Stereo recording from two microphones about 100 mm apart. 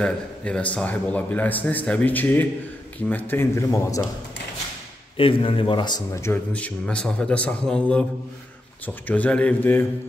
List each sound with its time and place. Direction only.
0.0 s a man's voice: 10° left (ahead or behind); by 4.0 s 30° left (ahead or behind)
5.1 s a man's voice: 60° left (ahead or behind); by 6.0 s 45° left (ahead or behind)
6.5 s a man's voice: 10° left (ahead or behind)